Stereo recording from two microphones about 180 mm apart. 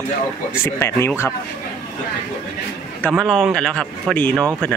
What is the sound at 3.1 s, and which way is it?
Speech, centre (ahead or behind).